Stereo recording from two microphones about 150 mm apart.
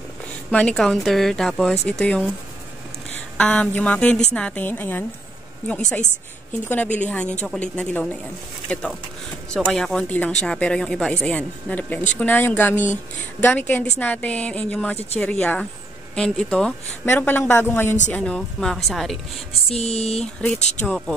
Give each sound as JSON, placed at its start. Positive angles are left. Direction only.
{"t": 0.5, "sound": "speech", "side_deg": 10}
{"t": 3.3, "sound": "speech", "side_deg": 10}
{"t": 7.0, "sound": "speech", "side_deg": 10}
{"t": 19.7, "sound": "a sound", "side_deg": 45}
{"t": 20.2, "sound": "speech", "side_deg": 10}
{"t": 20.5, "sound": "a sound", "side_deg": 50}